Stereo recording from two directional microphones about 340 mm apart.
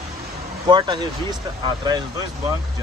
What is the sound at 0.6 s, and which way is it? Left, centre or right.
Speech, centre.